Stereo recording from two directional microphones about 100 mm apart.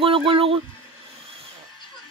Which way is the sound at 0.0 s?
65° right (ahead or behind).